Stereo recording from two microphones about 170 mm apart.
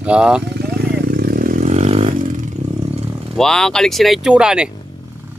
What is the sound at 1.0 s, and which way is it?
Motorcycle, 60° right (ahead or behind).